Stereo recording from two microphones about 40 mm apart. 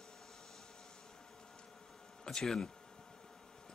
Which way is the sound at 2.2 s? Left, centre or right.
Centre.